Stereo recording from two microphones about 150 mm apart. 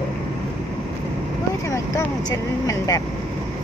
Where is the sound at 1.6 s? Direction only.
20° left (ahead or behind).